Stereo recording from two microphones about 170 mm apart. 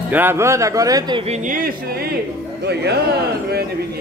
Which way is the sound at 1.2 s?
45° right (ahead or behind).